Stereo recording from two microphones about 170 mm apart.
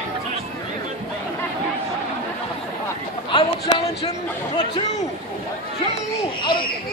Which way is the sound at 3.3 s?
25° left (ahead or behind).